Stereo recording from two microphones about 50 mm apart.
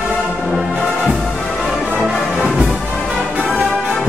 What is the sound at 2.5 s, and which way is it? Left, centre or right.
Music, right.